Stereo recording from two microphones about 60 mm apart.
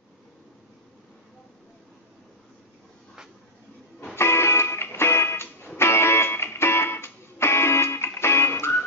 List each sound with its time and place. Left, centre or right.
4.1 s music: left